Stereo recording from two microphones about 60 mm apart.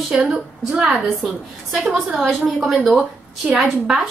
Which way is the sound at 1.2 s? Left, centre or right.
Centre.